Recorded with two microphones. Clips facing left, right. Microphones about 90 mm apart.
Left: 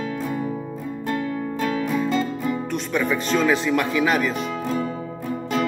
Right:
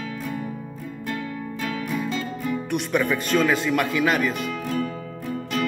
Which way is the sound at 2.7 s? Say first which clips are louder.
Right 3 dB; 10° right (ahead or behind).